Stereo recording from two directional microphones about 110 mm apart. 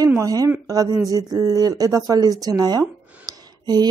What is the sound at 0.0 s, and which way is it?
Speech, 30° right (ahead or behind).